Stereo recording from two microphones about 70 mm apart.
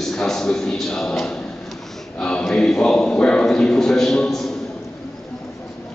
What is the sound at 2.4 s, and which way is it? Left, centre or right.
Speech, centre.